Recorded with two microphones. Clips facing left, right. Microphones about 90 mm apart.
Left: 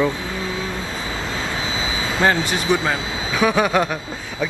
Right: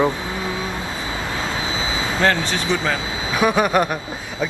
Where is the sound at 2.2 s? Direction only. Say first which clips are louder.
Left 1 dB; 15° left (ahead or behind).